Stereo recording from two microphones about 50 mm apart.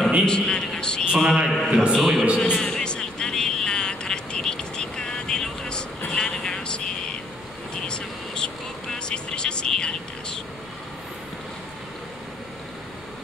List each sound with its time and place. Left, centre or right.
0.2 s a man's voice: centre
1.1 s a man's voice: centre
2.5 s vehicle: centre